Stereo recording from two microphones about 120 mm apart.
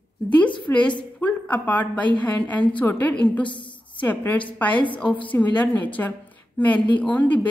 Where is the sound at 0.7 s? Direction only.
20° left (ahead or behind).